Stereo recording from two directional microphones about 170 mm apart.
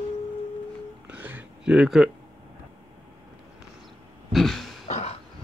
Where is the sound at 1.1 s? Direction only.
10° right (ahead or behind).